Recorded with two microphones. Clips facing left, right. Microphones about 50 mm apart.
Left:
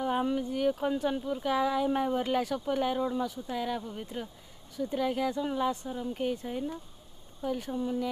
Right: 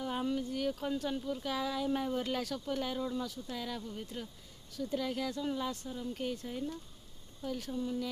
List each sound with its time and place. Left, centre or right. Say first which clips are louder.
0.0 s speech: left 6 dB; left